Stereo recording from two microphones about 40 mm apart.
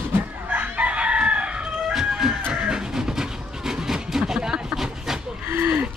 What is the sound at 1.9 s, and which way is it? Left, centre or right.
Music, centre.